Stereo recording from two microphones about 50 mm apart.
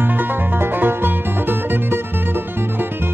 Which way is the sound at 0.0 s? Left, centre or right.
Right.